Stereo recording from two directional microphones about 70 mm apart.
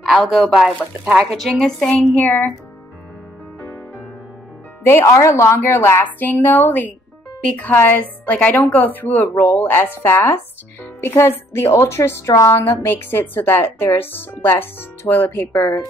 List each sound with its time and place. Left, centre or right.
0.0 s a woman's voice: centre
2.2 s a woman's voice: left
4.8 s a woman's voice: left
12.6 s speech: left